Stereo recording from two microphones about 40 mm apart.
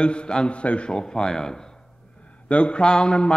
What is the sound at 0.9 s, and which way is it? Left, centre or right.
Speech, centre.